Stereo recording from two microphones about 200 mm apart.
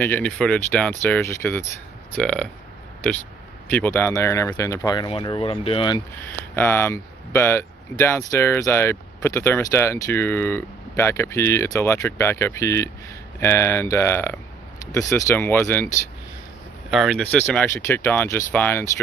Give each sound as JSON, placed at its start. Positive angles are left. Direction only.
{"t": 0.0, "sound": "speech", "side_deg": 5}
{"t": 3.7, "sound": "speech", "side_deg": 10}
{"t": 6.2, "sound": "speech", "side_deg": 10}
{"t": 16.9, "sound": "speech", "side_deg": 0}